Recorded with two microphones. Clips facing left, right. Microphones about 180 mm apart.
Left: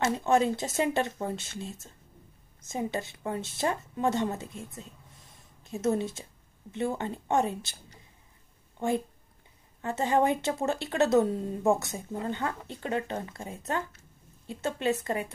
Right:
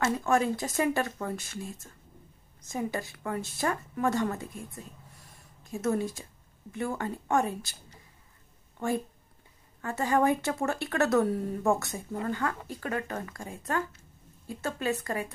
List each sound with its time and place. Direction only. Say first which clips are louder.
0.0 s speech: left 1 dB; 20° left (ahead or behind)
8.7 s speech: left 1 dB; 20° left (ahead or behind)